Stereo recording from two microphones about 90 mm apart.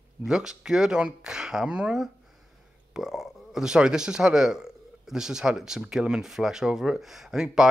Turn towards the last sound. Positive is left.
turn(degrees=-5)  # may be behind; listen again after turning